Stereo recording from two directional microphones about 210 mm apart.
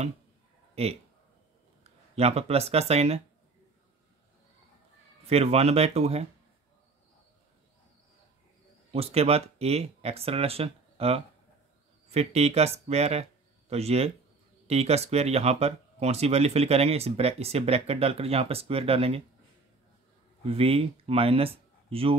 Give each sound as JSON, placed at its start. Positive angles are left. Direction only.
{"t": 1.8, "sound": "speech", "side_deg": -30}
{"t": 5.2, "sound": "speech", "side_deg": -30}
{"t": 8.9, "sound": "speech", "side_deg": -30}
{"t": 20.4, "sound": "speech", "side_deg": -30}